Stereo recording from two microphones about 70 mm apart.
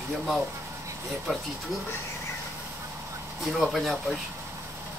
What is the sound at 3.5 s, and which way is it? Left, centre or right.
Speech, centre.